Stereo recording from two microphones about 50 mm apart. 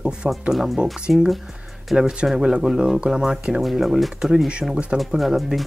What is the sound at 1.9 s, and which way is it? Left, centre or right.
Speech, centre.